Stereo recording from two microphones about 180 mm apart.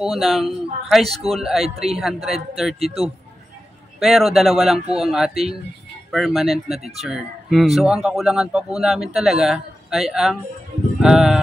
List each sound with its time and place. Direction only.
0.0 s speech: centre (ahead or behind)
1.0 s a man's voice: 35° right (ahead or behind)
1.3 s speech: centre (ahead or behind)
4.0 s speech: centre (ahead or behind)